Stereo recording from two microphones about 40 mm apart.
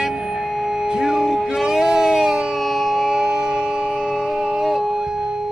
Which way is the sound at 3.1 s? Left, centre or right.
Centre.